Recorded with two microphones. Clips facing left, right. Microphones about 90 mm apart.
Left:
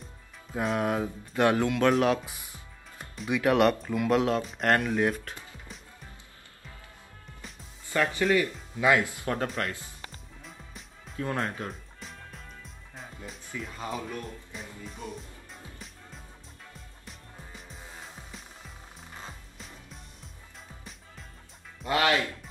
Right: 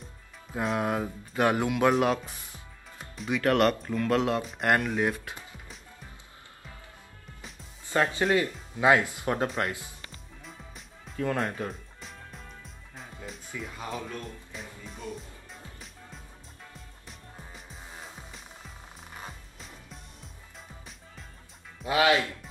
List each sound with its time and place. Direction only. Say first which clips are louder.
0.6 s speech: left 1 dB; centre (ahead or behind)
2.1 s speech: left 1 dB; 15° left (ahead or behind)
3.2 s speech: left 1 dB; 5° left (ahead or behind)
7.8 s speech: right 1 dB; 20° right (ahead or behind)
10.4 s music: right 1 dB; centre (ahead or behind)
11.3 s speech: right 1 dB; centre (ahead or behind)
12.0 s music: even; centre (ahead or behind)
13.6 s speech: left 1 dB; centre (ahead or behind)
17.0 s music: even; centre (ahead or behind)
19.6 s music: even; centre (ahead or behind)
21.8 s speech: right 2 dB; 10° right (ahead or behind)